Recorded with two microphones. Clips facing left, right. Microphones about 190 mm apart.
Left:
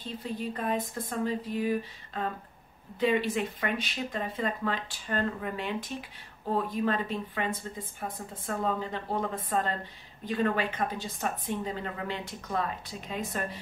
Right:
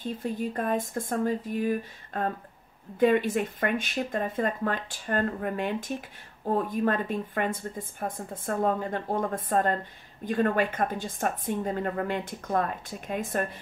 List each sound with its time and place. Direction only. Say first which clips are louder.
0.0 s a woman's voice: right 4 dB; 45° right (ahead or behind)